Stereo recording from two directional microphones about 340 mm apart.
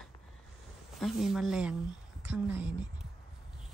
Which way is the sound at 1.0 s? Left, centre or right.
Centre.